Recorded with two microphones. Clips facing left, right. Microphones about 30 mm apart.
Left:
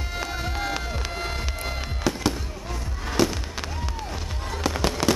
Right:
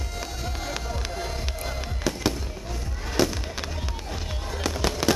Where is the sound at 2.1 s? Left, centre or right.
Centre.